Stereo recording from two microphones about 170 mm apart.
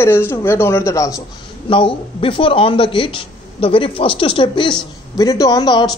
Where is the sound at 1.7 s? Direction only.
30° left (ahead or behind).